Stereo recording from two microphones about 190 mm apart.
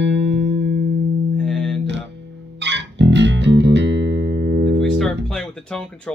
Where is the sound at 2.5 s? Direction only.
65° right (ahead or behind).